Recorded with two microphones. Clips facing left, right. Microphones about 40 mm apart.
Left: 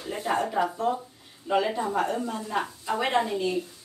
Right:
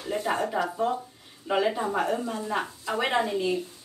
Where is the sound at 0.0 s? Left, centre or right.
Centre.